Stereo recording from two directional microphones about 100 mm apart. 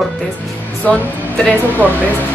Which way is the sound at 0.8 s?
15° left (ahead or behind).